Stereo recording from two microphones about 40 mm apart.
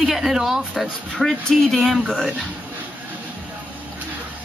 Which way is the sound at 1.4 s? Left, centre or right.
Centre.